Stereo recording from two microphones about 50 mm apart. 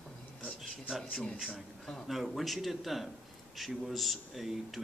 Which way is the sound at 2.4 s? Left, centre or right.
Centre.